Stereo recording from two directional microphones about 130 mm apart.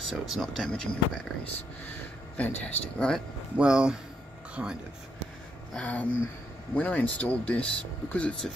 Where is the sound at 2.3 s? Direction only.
15° left (ahead or behind).